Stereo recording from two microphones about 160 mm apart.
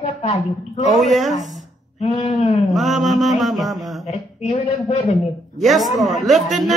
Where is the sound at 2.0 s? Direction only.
45° left (ahead or behind).